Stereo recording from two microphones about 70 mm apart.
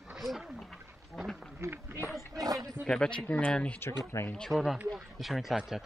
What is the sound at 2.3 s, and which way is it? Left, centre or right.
Speech, right.